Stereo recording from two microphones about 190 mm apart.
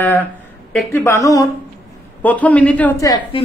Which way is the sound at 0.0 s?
10° left (ahead or behind).